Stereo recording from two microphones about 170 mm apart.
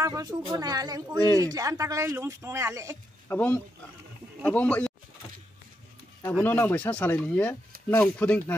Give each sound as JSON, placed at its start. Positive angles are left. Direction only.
{"t": 0.0, "sound": "speech", "side_deg": -20}
{"t": 3.3, "sound": "speech", "side_deg": 10}
{"t": 6.3, "sound": "speech", "side_deg": 10}